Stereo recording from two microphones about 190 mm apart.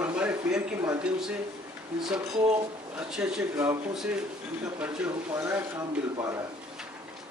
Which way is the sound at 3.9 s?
Centre (ahead or behind).